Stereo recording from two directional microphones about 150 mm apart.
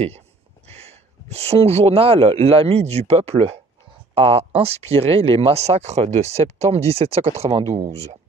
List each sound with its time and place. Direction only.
0.7 s speech: 45° right (ahead or behind)